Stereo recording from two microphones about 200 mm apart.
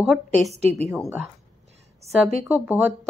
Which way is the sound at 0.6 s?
30° right (ahead or behind).